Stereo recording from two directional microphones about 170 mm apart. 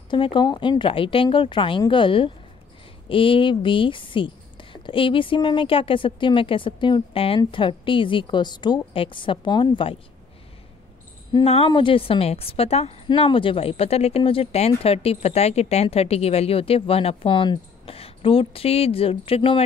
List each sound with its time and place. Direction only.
0.1 s a woman's voice: 30° left (ahead or behind)
11.4 s a woman's voice: 35° left (ahead or behind)